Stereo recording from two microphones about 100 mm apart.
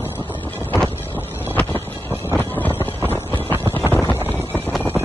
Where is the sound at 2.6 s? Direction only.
20° left (ahead or behind).